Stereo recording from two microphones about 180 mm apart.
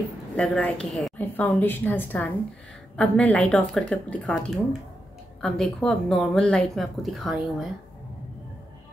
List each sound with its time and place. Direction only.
0.4 s a woman's voice: 5° left (ahead or behind)